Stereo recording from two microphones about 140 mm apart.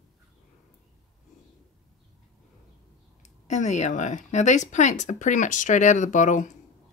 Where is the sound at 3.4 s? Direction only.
55° left (ahead or behind).